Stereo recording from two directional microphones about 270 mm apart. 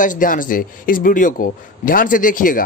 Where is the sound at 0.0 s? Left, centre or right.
Left.